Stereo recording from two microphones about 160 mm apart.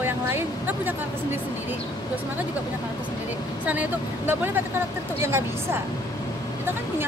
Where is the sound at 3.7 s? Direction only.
10° right (ahead or behind).